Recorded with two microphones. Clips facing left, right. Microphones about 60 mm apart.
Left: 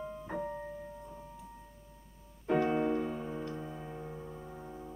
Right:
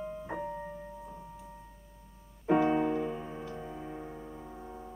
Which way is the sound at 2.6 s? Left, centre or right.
Centre.